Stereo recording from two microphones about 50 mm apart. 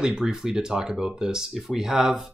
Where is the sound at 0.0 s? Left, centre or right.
Centre.